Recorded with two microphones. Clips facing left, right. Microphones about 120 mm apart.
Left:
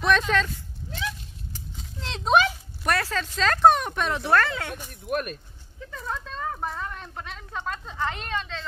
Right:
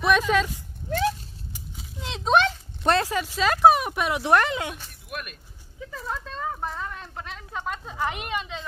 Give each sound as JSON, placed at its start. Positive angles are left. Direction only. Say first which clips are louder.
{"t": 0.0, "sound": "speech", "louder": "right 1 dB", "side_deg": -10}
{"t": 0.8, "sound": "a sound", "louder": "right 9 dB", "side_deg": -50}
{"t": 1.5, "sound": "a sound", "louder": "left 1 dB", "side_deg": -10}
{"t": 2.8, "sound": "speech", "louder": "right 4 dB", "side_deg": -25}
{"t": 3.1, "sound": "speech", "louder": "right 1 dB", "side_deg": -10}
{"t": 5.0, "sound": "speech", "louder": "left 9 dB", "side_deg": 40}
{"t": 5.8, "sound": "speech", "louder": "right 1 dB", "side_deg": -5}